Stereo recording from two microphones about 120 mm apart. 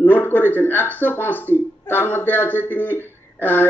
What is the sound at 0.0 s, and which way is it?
A woman's voice, 15° left (ahead or behind).